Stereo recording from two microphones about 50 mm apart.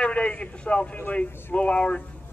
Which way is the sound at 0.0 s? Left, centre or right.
Left.